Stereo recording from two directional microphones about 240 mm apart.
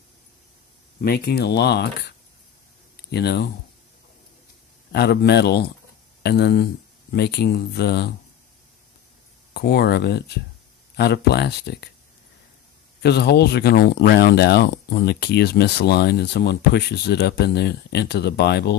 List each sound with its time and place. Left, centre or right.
1.0 s speech: left
4.9 s speech: left
9.5 s speech: left
13.0 s speech: left